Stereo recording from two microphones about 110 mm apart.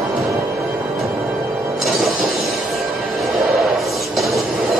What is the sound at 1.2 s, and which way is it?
Music, centre (ahead or behind).